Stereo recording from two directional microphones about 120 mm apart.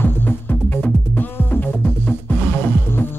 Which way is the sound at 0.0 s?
15° left (ahead or behind).